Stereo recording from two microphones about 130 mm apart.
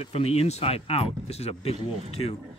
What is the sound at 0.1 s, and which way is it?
Speech, 50° left (ahead or behind).